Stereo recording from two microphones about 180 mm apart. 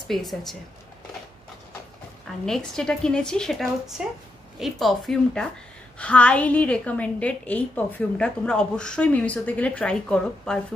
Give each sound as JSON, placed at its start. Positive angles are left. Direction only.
{"t": 0.1, "sound": "a woman's voice", "side_deg": 0}
{"t": 2.4, "sound": "a woman's voice", "side_deg": 5}